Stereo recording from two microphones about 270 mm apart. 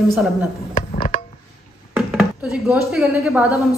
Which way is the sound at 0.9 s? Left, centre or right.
Left.